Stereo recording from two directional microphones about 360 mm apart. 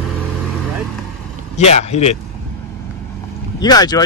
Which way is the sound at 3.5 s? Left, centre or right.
Centre.